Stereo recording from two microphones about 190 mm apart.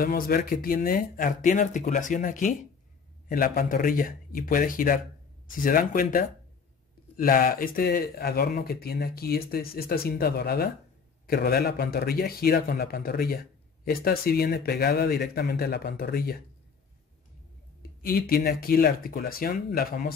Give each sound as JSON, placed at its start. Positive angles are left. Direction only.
{"t": 0.0, "sound": "a man's voice", "side_deg": 50}
{"t": 18.0, "sound": "a man's voice", "side_deg": 50}